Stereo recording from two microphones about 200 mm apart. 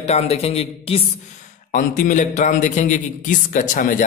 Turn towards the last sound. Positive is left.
turn(degrees=40)  # may be behind; listen again after turning